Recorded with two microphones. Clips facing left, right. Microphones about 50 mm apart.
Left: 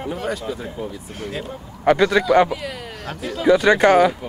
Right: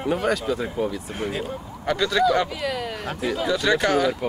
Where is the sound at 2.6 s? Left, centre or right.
Right.